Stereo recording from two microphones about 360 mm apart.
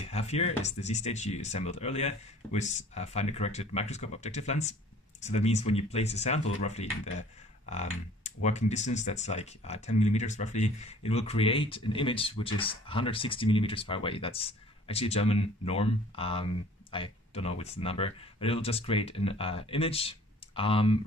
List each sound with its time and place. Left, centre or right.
0.0 s speech: centre